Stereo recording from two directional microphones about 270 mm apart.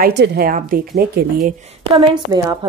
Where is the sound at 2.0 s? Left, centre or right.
Centre.